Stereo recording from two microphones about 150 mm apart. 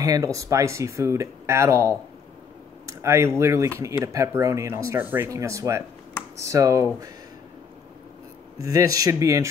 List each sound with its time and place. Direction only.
0.0 s speech: 20° right (ahead or behind)
8.5 s speech: 25° right (ahead or behind)